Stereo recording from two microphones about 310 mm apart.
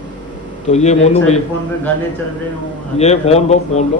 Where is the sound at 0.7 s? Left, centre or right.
Left.